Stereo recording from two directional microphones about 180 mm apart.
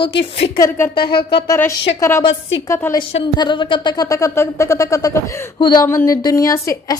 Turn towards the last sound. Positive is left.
turn(degrees=15)  # may be behind; listen again after turning